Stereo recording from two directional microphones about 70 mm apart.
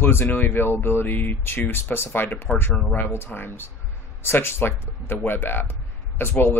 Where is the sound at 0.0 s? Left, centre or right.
Left.